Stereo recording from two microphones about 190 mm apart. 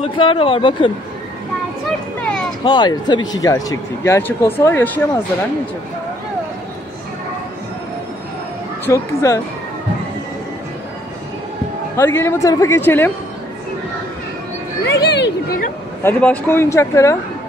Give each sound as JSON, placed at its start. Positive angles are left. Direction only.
{"t": 0.0, "sound": "speech", "side_deg": 30}
{"t": 2.1, "sound": "a sound", "side_deg": 10}
{"t": 2.6, "sound": "a man's voice", "side_deg": 20}
{"t": 8.8, "sound": "a man's voice", "side_deg": 15}
{"t": 12.0, "sound": "a man's voice", "side_deg": 10}
{"t": 14.9, "sound": "a sound", "side_deg": 60}
{"t": 16.0, "sound": "a man's voice", "side_deg": 10}